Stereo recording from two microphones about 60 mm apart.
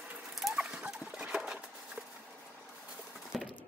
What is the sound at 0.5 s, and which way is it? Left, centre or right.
Turkey, centre.